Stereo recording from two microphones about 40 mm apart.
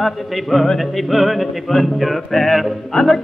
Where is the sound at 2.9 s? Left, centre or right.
Left.